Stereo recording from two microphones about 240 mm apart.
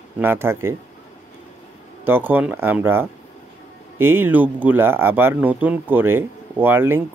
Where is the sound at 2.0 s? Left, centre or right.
Centre.